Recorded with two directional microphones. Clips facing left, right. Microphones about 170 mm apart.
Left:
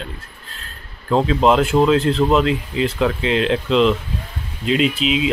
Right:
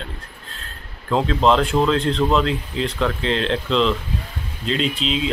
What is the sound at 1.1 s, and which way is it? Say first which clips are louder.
Speech: left 2 dB; 5° left (ahead or behind).